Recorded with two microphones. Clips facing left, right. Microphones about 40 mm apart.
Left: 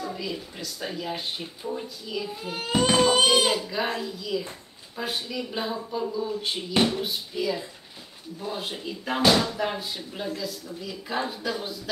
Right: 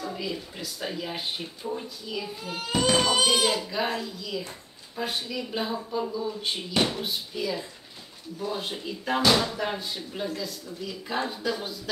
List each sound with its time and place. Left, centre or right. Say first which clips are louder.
0.0 s speech: even; centre
2.8 s a sound: left 3 dB; centre
3.3 s speech: left 2 dB; centre